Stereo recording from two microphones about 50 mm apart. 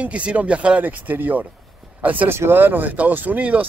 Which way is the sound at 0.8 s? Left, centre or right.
Right.